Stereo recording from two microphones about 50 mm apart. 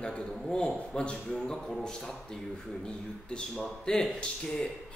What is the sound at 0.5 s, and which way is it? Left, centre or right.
A man's voice, centre.